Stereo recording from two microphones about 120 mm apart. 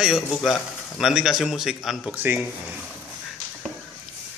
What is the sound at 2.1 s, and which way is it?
Speech, 15° right (ahead or behind).